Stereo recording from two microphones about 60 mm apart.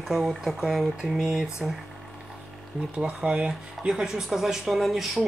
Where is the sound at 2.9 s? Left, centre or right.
Centre.